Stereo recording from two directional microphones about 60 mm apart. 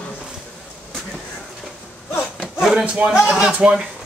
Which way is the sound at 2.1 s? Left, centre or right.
Left.